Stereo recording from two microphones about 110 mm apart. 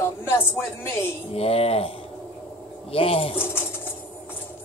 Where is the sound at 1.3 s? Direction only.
65° left (ahead or behind).